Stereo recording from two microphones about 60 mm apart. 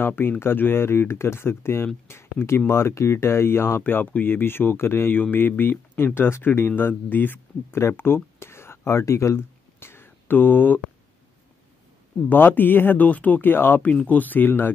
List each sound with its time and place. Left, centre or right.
0.0 s speech: left
12.3 s speech: left